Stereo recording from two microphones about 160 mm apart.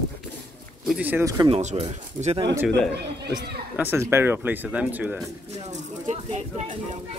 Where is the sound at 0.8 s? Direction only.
10° right (ahead or behind).